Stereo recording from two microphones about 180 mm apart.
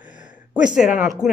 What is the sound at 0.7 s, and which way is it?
Speech, 5° right (ahead or behind).